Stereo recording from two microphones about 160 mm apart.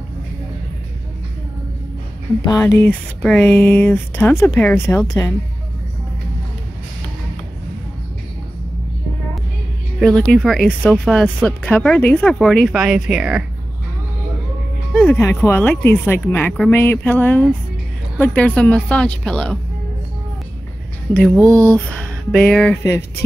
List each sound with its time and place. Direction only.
2.6 s speech: 15° left (ahead or behind)
9.9 s speech: 5° left (ahead or behind)
15.0 s speech: 10° left (ahead or behind)
21.1 s speech: 10° left (ahead or behind)
21.5 s music: 20° right (ahead or behind)
21.7 s speech: 5° left (ahead or behind)